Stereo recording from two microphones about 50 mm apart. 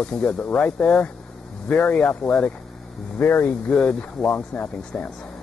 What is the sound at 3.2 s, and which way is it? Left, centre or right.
Speech, left.